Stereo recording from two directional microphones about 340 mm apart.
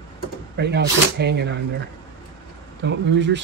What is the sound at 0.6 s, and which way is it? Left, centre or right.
Speech, right.